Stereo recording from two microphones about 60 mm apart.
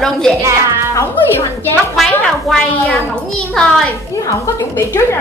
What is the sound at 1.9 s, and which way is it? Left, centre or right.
A woman's voice, centre.